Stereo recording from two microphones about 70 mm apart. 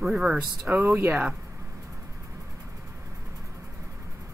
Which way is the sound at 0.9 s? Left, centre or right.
Right.